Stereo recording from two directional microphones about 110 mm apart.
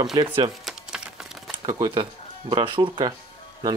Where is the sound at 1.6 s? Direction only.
40° right (ahead or behind).